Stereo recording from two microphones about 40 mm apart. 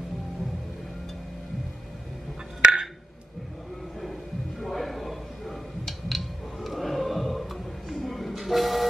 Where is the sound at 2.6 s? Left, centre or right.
Right.